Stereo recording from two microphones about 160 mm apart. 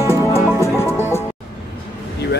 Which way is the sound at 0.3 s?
15° left (ahead or behind).